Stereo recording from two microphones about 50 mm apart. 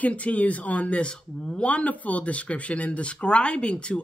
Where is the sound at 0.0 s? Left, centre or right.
Left.